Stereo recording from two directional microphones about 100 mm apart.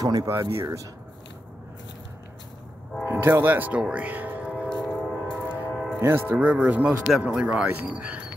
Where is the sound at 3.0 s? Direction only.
25° right (ahead or behind).